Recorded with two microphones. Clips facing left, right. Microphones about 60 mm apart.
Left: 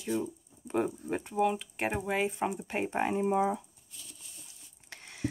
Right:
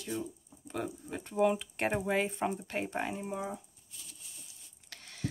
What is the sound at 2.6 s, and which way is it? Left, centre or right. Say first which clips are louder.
Speech: left 4 dB; centre.